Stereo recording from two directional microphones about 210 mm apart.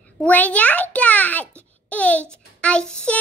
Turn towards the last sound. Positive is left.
turn(degrees=5)  # may be behind; listen again after turning